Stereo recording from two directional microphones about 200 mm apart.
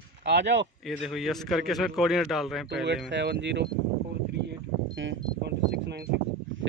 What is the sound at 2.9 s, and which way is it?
Speech, 60° right (ahead or behind).